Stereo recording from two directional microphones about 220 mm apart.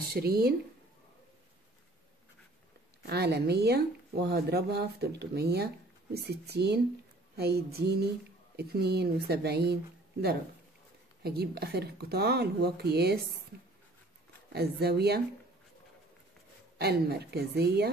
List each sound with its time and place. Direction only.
0.1 s speech: 45° right (ahead or behind)
3.1 s speech: 45° right (ahead or behind)
11.2 s speech: 45° right (ahead or behind)
14.5 s speech: 45° right (ahead or behind)
16.7 s speech: 45° right (ahead or behind)